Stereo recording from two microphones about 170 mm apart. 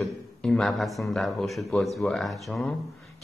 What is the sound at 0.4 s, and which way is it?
Speech, centre (ahead or behind).